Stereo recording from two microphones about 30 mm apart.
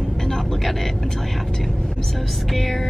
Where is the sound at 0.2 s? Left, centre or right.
Centre.